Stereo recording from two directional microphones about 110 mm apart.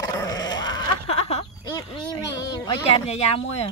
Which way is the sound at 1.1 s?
70° left (ahead or behind).